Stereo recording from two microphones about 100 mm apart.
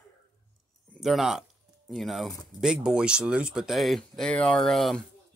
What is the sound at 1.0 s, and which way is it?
Speech, 5° right (ahead or behind).